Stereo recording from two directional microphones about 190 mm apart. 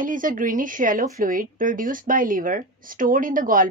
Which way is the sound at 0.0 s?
45° right (ahead or behind).